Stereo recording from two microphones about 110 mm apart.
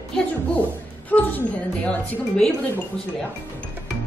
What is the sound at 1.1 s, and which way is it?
A woman's voice, 15° left (ahead or behind).